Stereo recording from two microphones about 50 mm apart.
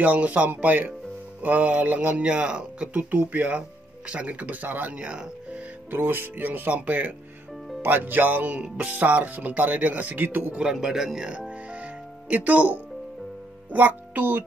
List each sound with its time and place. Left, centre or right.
0.0 s speech: right
3.0 s speech: right
10.7 s music: centre
12.4 s speech: right
13.7 s music: right